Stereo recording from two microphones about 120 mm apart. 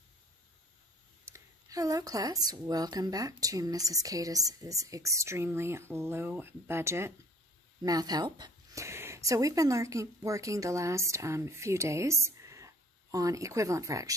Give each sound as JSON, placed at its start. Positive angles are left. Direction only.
{"t": 1.2, "sound": "speech", "side_deg": -25}
{"t": 7.8, "sound": "speech", "side_deg": -30}